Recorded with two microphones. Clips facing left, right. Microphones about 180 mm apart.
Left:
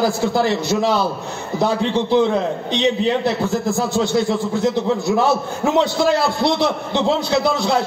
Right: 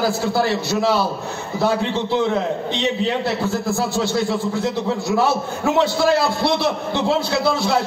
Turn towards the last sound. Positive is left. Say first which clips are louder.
# left 1 dB
turn(degrees=20)  # may be behind; listen again after turning